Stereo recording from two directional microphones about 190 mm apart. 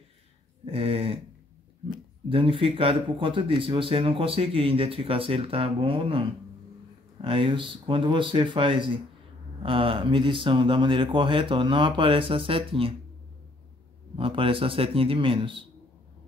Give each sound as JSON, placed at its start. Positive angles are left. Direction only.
{"t": 0.7, "sound": "speech", "side_deg": -30}
{"t": 2.2, "sound": "speech", "side_deg": -30}
{"t": 14.1, "sound": "speech", "side_deg": -30}